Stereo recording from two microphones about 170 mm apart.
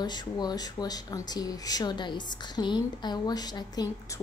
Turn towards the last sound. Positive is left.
turn(degrees=25)  # may be behind; listen again after turning